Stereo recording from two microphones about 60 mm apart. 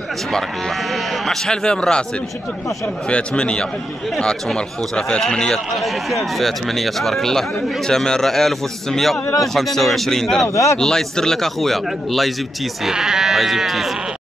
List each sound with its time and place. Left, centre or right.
1.2 s a man's voice: centre
3.1 s a man's voice: centre
10.5 s speech: left
10.8 s speech: centre
12.8 s speech: centre